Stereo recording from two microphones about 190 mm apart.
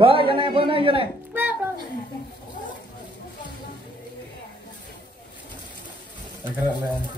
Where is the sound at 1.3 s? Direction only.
10° right (ahead or behind).